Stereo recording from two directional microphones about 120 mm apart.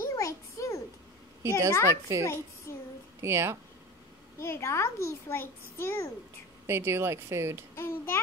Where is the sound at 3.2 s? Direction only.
20° right (ahead or behind).